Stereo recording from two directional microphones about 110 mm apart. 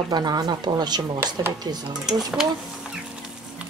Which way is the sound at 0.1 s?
40° right (ahead or behind).